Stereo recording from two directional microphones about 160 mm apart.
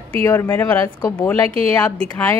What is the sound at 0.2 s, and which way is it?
A woman's voice, 15° left (ahead or behind).